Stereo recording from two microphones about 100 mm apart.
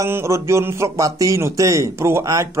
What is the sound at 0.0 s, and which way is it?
Music, 30° right (ahead or behind).